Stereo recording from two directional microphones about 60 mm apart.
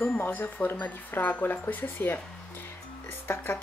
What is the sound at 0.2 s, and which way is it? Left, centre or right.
A woman's voice, left.